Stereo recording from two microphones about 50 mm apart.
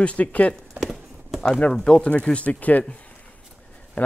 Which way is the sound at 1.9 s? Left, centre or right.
Left.